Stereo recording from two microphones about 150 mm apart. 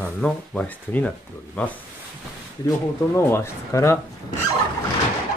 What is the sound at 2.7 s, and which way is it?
Speech, 15° left (ahead or behind).